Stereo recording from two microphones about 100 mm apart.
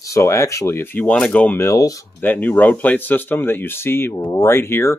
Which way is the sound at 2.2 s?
20° left (ahead or behind).